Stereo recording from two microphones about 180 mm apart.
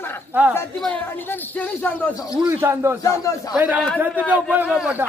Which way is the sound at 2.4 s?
15° right (ahead or behind).